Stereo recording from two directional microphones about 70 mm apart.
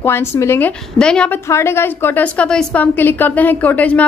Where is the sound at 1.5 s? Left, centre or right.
Left.